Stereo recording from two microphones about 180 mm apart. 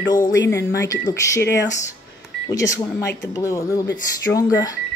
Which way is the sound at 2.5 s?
20° left (ahead or behind).